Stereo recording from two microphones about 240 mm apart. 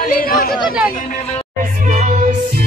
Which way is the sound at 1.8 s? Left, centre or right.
Right.